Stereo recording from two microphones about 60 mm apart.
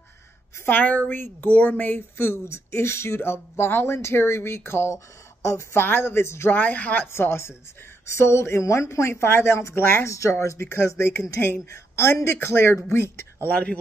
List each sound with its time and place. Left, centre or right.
0.7 s speech: left
2.1 s speech: left
6.5 s speech: left
7.1 s speech: left
9.8 s speech: left
10.0 s speech: left
13.5 s speech: left